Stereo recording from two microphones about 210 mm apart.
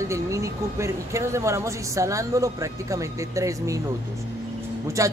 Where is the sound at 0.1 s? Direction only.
15° right (ahead or behind).